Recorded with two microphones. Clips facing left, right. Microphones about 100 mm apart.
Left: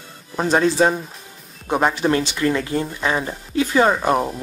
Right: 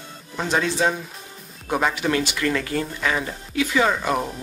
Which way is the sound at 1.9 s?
30° left (ahead or behind).